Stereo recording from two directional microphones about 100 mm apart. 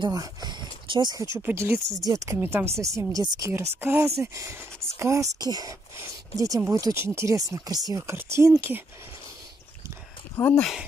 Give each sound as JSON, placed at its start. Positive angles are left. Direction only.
{"t": 0.0, "sound": "speech", "side_deg": -45}
{"t": 1.3, "sound": "speech", "side_deg": -25}
{"t": 2.3, "sound": "speech", "side_deg": -20}
{"t": 3.8, "sound": "speech", "side_deg": -20}
{"t": 4.2, "sound": "speech", "side_deg": -30}
{"t": 8.1, "sound": "speech", "side_deg": -25}
{"t": 10.3, "sound": "speech", "side_deg": 25}